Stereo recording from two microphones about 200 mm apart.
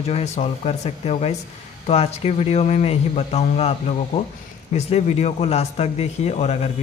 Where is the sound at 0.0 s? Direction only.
30° left (ahead or behind).